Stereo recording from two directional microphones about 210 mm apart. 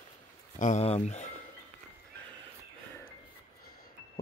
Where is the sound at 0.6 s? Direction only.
35° left (ahead or behind).